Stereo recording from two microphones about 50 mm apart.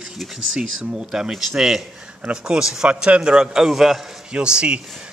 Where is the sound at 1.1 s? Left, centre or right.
Centre.